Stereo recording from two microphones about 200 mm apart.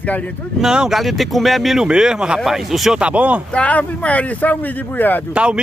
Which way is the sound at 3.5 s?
5° left (ahead or behind).